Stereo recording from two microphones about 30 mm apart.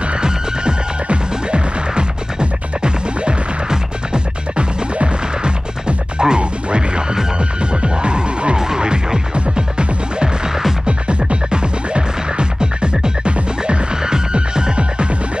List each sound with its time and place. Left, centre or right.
1.0 s music: right
4.6 s music: right
8.5 s music: right
10.9 s music: right